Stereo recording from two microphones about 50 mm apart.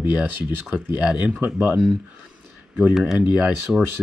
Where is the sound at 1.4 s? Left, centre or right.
Right.